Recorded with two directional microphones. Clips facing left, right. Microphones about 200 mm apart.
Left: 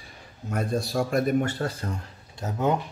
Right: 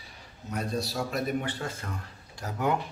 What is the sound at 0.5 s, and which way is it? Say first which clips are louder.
A man's voice: left 5 dB; 50° left (ahead or behind).